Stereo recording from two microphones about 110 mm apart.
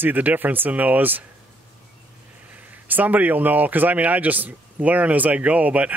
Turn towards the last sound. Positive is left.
turn(degrees=-15)  # may be behind; listen again after turning